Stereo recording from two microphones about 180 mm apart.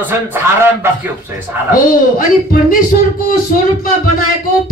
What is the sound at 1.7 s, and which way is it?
Speech, 50° left (ahead or behind).